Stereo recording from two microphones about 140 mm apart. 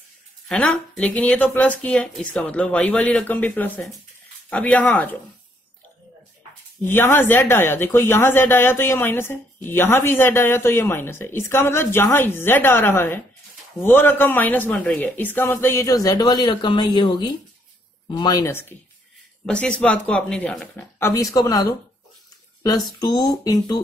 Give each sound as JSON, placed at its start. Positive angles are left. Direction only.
{"t": 0.5, "sound": "speech", "side_deg": 5}
{"t": 6.8, "sound": "speech", "side_deg": 15}